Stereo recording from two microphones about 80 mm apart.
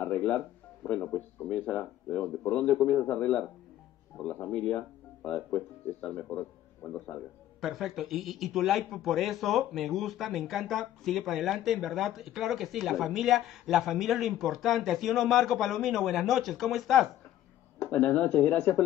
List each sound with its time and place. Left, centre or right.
1.0 s a man's voice: left
1.5 s a man's voice: centre
6.1 s a man's voice: left
7.6 s speech: centre
17.8 s a man's voice: centre